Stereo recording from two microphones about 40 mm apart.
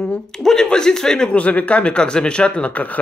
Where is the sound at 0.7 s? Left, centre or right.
Centre.